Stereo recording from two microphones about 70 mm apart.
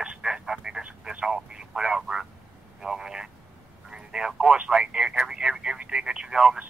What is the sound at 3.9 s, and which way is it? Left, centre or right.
Telephone, centre.